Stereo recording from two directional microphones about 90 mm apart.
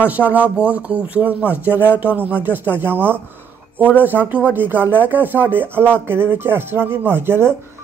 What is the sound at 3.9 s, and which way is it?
Music, 20° right (ahead or behind).